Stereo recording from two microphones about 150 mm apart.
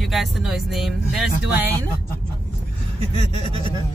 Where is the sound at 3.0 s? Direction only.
45° right (ahead or behind).